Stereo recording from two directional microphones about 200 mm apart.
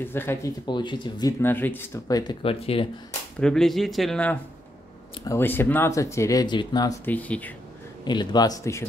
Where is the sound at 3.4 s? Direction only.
Centre (ahead or behind).